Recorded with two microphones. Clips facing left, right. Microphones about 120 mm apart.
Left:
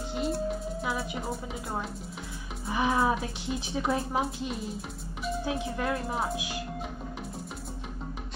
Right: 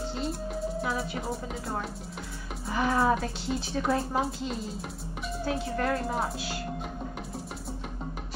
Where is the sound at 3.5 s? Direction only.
15° left (ahead or behind).